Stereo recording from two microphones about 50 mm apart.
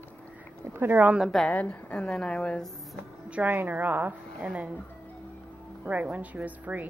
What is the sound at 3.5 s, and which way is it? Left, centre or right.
Speech, right.